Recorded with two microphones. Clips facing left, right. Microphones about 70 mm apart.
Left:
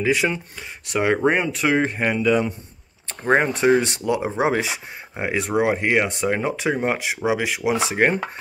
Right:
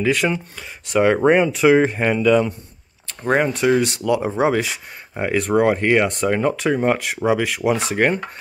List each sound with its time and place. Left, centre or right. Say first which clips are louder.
0.1 s speech: right 1 dB; centre
3.3 s speech: even; left
4.4 s speech: right 2 dB; left; by 7.9 s centre
7.9 s speech: left 1 dB; centre